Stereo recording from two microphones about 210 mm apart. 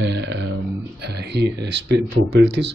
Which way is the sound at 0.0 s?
55° right (ahead or behind).